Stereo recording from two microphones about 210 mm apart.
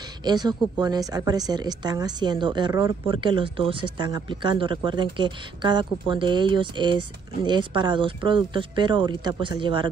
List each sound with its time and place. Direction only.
0.2 s a woman's voice: 20° right (ahead or behind)